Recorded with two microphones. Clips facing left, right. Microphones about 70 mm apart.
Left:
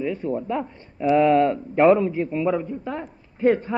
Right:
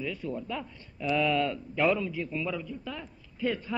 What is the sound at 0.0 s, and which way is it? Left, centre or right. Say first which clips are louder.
Speech: left 9 dB; left.